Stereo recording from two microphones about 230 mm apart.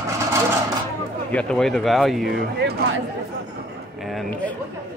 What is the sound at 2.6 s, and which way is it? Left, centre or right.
Chatter, right.